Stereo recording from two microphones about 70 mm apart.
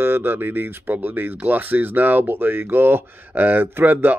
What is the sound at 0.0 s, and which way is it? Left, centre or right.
Speech, right.